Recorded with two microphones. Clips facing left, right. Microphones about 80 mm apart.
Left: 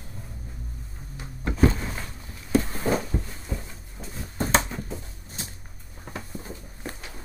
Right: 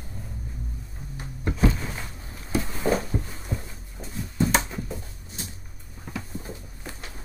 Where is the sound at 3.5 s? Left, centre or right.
Right.